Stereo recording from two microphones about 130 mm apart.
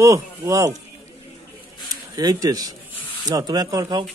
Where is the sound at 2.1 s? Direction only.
30° right (ahead or behind).